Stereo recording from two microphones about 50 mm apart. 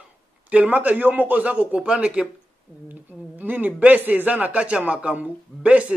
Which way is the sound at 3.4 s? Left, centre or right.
Right.